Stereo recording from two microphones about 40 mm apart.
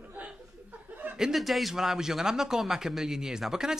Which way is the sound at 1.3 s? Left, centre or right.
Centre.